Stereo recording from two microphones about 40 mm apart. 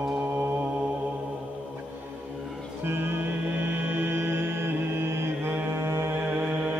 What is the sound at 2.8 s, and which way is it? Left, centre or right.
Music, right.